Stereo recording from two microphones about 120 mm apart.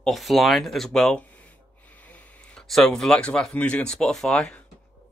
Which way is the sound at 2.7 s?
5° left (ahead or behind).